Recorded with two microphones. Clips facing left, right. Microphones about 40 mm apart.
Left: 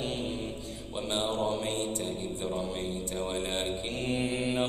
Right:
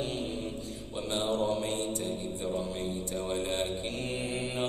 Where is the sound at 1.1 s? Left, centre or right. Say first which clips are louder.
Right 1 dB; left.